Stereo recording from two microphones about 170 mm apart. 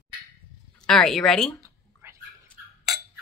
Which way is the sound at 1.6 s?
15° right (ahead or behind).